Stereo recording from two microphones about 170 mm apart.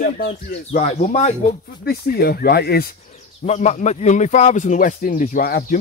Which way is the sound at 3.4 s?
40° left (ahead or behind).